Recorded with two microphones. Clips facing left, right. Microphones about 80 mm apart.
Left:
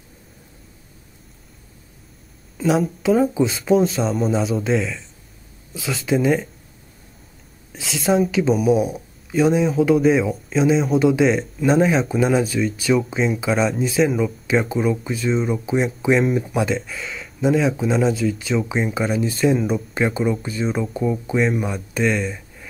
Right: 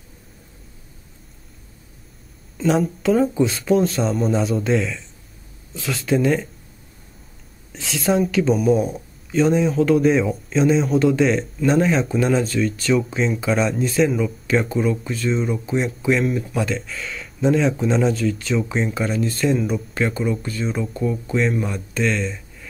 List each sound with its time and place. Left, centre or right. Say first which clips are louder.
2.5 s speech: even; centre
7.7 s speech: left 1 dB; centre
16.7 s speech: left 2 dB; centre
20.9 s speech: left 1 dB; centre